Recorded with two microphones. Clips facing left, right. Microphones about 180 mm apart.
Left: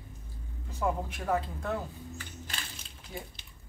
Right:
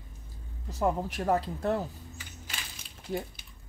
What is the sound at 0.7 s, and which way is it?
Speech, 40° right (ahead or behind).